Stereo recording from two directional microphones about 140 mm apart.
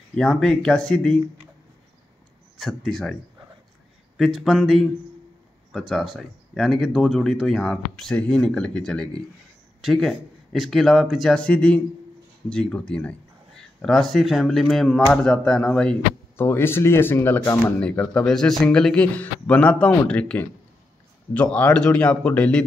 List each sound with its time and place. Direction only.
0.1 s speech: 5° left (ahead or behind)
2.5 s speech: centre (ahead or behind)
4.2 s speech: centre (ahead or behind)
16.4 s speech: 15° left (ahead or behind)